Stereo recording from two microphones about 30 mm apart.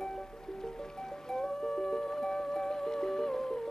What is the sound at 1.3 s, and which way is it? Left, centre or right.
Music, centre.